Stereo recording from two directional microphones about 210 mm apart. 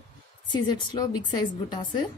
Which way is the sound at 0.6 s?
20° left (ahead or behind).